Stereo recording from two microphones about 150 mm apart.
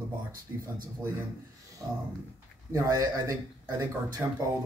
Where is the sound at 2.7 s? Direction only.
20° right (ahead or behind).